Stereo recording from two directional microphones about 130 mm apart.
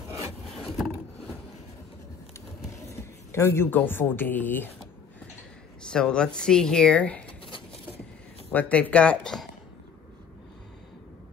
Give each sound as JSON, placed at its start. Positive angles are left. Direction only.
{"t": 0.5, "sound": "wood", "side_deg": 0}
{"t": 2.9, "sound": "speech", "side_deg": 20}
{"t": 5.8, "sound": "speech", "side_deg": 5}
{"t": 8.5, "sound": "speech", "side_deg": 10}